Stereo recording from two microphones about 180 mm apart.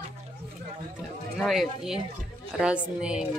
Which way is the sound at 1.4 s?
Centre (ahead or behind).